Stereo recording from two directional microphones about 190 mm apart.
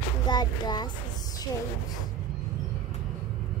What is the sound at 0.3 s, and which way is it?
Speech, 20° left (ahead or behind).